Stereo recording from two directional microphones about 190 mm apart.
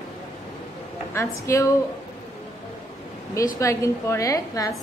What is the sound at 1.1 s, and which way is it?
Speech, 15° left (ahead or behind).